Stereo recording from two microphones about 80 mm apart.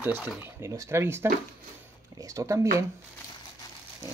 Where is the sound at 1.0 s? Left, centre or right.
Right.